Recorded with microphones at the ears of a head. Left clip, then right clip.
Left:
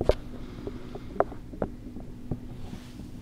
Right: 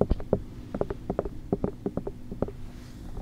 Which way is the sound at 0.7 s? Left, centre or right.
Right.